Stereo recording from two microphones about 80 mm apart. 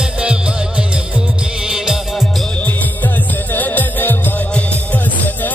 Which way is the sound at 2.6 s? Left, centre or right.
Left.